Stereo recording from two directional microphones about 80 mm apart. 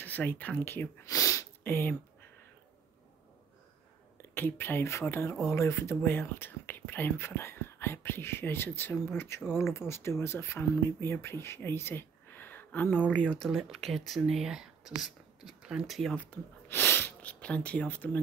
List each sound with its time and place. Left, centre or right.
0.0 s speech: left
1.0 s a sound: left
1.6 s speech: left
4.2 s speech: left
13.5 s speech: centre
16.6 s a sound: left